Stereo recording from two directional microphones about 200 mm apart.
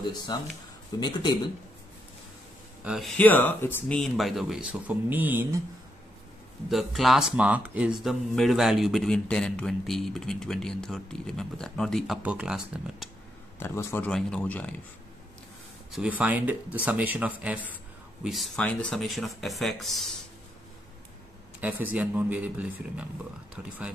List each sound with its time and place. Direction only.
0.3 s speech: 20° left (ahead or behind)
2.8 s speech: centre (ahead or behind)
6.7 s speech: centre (ahead or behind)
13.6 s a man's voice: 10° left (ahead or behind)
15.9 s speech: 5° right (ahead or behind)
21.5 s speech: 10° right (ahead or behind)